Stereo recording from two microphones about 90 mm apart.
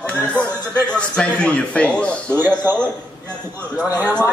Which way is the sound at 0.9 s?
10° left (ahead or behind).